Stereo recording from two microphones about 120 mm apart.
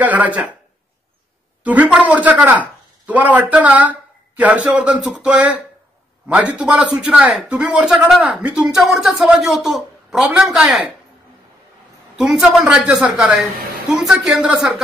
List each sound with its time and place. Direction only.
0.0 s speech: 15° right (ahead or behind)
1.6 s speech: 10° right (ahead or behind)
12.2 s a woman's voice: 5° right (ahead or behind)